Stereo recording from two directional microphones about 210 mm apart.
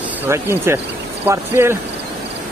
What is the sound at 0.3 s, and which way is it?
Speech, 10° right (ahead or behind).